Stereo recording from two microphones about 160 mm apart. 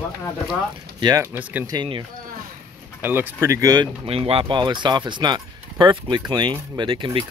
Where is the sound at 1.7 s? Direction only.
30° right (ahead or behind).